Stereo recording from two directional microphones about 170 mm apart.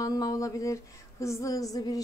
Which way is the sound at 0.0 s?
20° left (ahead or behind).